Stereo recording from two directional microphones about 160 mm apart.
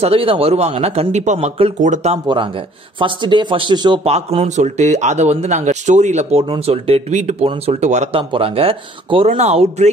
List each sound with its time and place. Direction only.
0.0 s a man's voice: 35° right (ahead or behind)
2.2 s a man's voice: 30° right (ahead or behind)
4.1 s speech: 40° right (ahead or behind)
6.4 s a man's voice: 35° right (ahead or behind)
8.2 s a man's voice: 35° right (ahead or behind)